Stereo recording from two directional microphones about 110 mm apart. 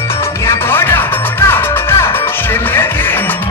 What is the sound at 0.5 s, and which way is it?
Music, 20° left (ahead or behind).